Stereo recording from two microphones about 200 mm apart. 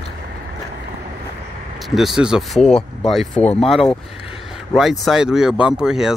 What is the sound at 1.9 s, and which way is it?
Speech, centre (ahead or behind).